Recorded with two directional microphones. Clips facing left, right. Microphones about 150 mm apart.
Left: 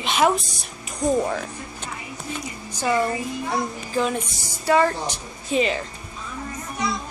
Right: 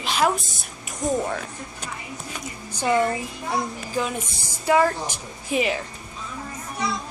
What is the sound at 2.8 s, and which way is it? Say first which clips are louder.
Speech: right 1 dB; 20° right (ahead or behind).